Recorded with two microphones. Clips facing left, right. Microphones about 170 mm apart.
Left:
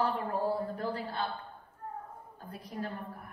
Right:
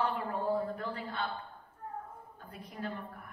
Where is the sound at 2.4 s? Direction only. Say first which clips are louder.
Left 4 dB; 35° left (ahead or behind).